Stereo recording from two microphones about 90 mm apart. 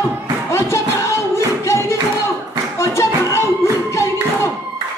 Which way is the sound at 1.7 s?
30° left (ahead or behind).